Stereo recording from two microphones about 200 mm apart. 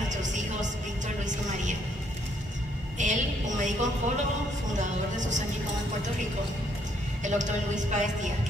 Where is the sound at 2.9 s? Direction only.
40° right (ahead or behind).